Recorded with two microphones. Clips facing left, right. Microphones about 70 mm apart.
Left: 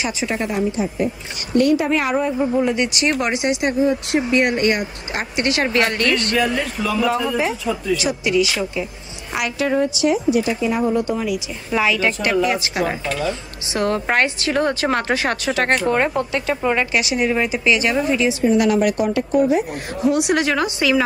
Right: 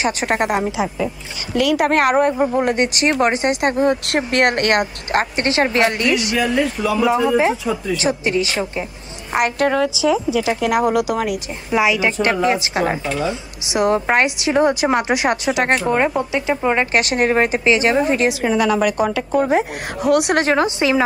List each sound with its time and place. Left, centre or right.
0.2 s speech: right
2.3 s a woman's voice: right
5.3 s speech: right
8.0 s speech: right
9.3 s a woman's voice: right
10.4 s speech: right
11.7 s speech: centre
12.2 s speech: right
16.9 s a woman's voice: right
17.6 s speech: right
18.0 s a woman's voice: right
19.0 s speech: right
20.1 s speech: right
20.4 s speech: right